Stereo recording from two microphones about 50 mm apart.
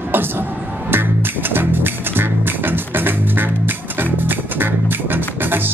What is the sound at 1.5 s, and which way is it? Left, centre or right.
Music, right.